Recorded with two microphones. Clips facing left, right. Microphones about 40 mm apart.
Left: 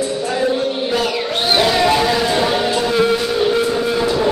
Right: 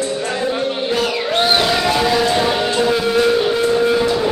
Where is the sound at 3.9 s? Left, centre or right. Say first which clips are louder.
Right 1 dB; centre.